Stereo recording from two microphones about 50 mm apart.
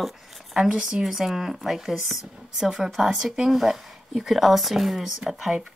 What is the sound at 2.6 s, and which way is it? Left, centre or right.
Speech, centre.